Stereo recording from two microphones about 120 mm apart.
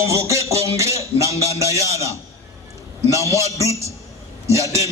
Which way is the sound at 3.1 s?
25° right (ahead or behind).